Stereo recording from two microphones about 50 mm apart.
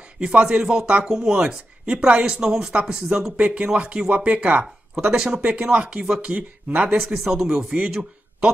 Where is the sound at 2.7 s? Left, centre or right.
Right.